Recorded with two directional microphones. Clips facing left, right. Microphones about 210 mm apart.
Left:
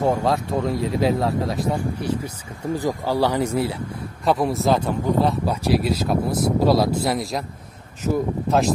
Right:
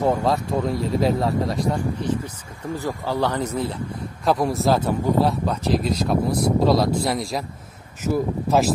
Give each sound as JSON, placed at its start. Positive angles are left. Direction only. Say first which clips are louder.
{"t": 0.0, "sound": "speech", "louder": "even", "side_deg": 0}
{"t": 8.5, "sound": "speech", "louder": "even", "side_deg": 0}